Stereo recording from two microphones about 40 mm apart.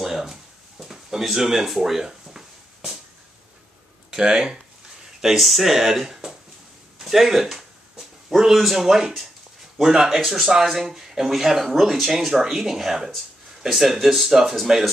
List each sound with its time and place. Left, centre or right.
0.0 s a sound: centre
4.1 s speech: centre
5.2 s speech: centre